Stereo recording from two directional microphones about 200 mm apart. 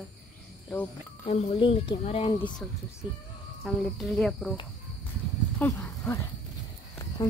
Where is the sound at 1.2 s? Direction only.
30° left (ahead or behind).